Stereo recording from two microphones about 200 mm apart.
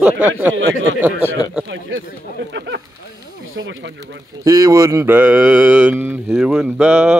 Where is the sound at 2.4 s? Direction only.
60° right (ahead or behind).